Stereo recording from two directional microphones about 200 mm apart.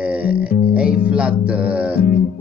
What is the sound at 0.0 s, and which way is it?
Music, 5° right (ahead or behind).